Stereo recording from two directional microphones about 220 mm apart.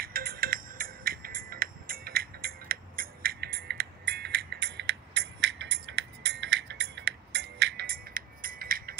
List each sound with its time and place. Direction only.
0.0 s music: 40° right (ahead or behind)